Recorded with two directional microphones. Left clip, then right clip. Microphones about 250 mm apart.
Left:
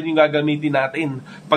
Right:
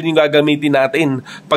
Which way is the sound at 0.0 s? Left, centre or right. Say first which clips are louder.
Right 4 dB; right.